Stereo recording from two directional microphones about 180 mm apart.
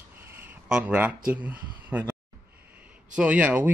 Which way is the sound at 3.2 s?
10° right (ahead or behind).